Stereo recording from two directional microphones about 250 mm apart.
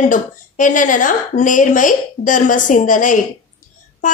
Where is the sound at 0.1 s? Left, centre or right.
Left.